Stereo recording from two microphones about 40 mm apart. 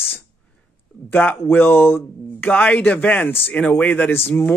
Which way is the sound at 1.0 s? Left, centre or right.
Left.